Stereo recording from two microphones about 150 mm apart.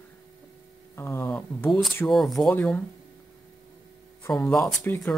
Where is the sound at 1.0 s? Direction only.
15° left (ahead or behind).